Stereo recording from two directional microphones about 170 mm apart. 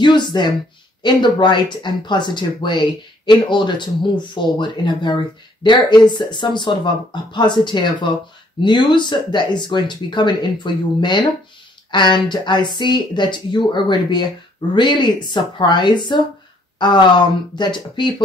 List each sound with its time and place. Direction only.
0.0 s speech: 25° left (ahead or behind)